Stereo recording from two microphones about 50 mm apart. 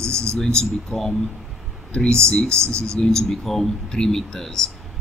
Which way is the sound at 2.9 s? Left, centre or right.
Centre.